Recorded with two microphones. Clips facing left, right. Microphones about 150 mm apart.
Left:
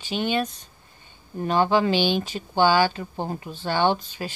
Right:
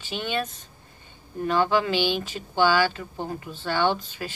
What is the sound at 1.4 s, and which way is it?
Speech, 25° left (ahead or behind).